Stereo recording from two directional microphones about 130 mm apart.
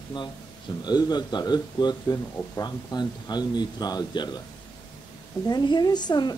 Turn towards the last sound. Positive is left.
turn(degrees=35)  # may be behind; listen again after turning